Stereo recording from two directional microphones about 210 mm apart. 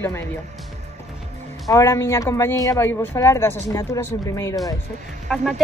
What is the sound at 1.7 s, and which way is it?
Speech, 15° left (ahead or behind).